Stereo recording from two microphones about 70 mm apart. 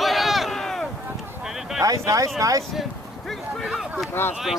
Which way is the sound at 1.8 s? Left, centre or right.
Right.